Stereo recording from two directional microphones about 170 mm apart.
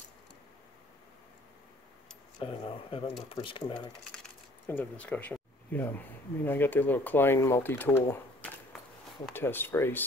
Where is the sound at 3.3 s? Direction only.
30° left (ahead or behind).